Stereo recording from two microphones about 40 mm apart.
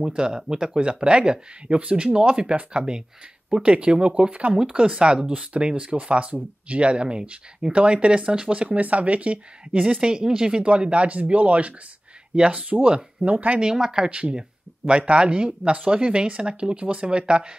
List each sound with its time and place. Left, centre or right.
0.0 s speech: centre; by 4.6 s right
4.6 s speech: right
8.6 s speech: right
9.8 s speech: right
10.6 s speech: right
13.6 s speech: centre
14.1 s speech: right